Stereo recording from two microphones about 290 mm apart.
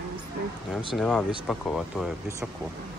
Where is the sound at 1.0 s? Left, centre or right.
Centre.